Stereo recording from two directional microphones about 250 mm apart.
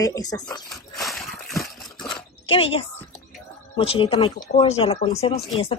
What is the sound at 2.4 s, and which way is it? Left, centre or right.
Speech, left.